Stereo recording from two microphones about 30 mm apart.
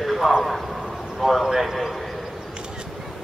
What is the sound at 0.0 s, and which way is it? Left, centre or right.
A man's voice, centre.